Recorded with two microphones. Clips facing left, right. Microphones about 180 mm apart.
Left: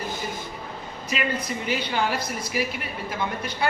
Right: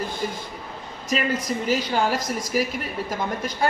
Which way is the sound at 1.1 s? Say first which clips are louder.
Right 4 dB; 40° right (ahead or behind).